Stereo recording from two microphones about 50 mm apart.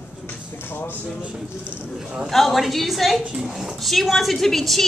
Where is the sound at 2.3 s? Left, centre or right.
Centre.